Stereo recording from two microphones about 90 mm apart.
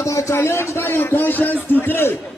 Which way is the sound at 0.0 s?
35° left (ahead or behind).